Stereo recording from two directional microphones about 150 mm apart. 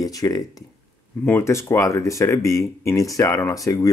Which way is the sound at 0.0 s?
25° left (ahead or behind).